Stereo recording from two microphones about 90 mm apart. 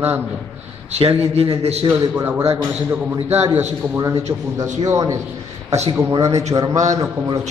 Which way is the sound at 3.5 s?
30° right (ahead or behind).